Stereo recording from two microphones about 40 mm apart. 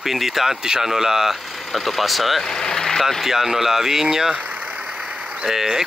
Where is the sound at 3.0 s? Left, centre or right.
Centre.